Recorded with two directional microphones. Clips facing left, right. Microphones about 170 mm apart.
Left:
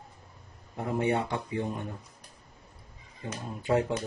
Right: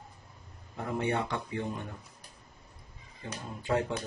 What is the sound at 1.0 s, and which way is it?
Speech, 20° left (ahead or behind).